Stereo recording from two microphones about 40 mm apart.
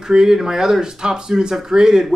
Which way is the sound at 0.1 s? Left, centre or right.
Centre.